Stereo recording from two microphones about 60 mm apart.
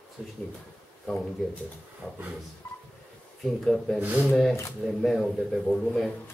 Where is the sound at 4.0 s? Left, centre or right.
Right.